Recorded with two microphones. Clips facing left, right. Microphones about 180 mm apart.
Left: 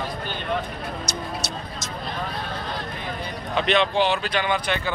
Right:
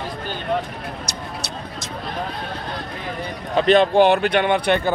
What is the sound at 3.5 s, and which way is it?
Speech, 40° right (ahead or behind).